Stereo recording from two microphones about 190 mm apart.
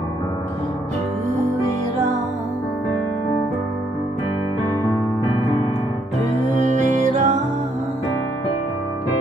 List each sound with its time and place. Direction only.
6.4 s music: 40° right (ahead or behind)